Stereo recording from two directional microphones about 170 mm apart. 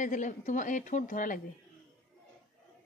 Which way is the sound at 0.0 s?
45° left (ahead or behind).